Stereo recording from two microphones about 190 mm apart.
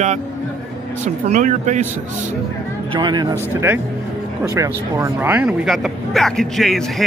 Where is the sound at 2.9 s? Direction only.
25° right (ahead or behind).